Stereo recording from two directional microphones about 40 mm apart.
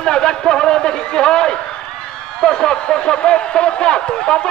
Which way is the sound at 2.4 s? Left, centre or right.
Centre.